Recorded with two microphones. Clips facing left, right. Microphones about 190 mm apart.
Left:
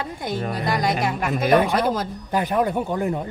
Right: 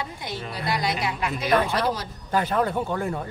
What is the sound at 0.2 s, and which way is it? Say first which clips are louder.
A woman's voice: left 6 dB; 50° left (ahead or behind).